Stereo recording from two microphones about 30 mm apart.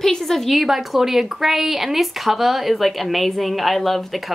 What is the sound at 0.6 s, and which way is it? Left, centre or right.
Speech, centre.